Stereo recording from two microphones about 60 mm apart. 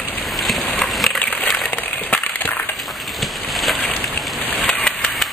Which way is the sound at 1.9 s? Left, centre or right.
Left.